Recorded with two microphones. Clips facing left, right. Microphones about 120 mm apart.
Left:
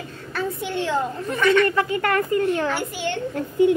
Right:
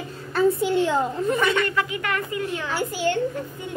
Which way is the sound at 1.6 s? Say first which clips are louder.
Left 5 dB; 30° left (ahead or behind).